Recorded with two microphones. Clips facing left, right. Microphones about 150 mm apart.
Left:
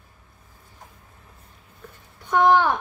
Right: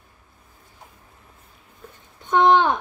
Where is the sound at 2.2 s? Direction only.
20° right (ahead or behind).